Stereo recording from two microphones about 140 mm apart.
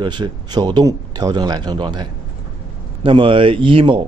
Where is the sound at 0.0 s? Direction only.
30° right (ahead or behind).